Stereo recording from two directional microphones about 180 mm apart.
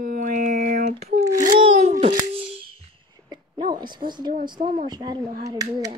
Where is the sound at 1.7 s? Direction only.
40° right (ahead or behind).